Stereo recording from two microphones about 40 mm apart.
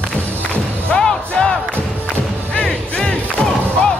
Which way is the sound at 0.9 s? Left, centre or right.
Centre.